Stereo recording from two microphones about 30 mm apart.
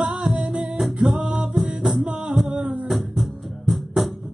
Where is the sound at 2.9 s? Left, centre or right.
Centre.